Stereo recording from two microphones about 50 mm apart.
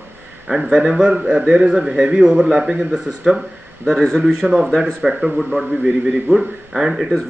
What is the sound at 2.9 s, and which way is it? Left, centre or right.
Speech, centre.